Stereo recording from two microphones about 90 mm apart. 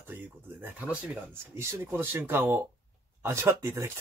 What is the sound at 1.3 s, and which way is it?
Speech, 30° right (ahead or behind).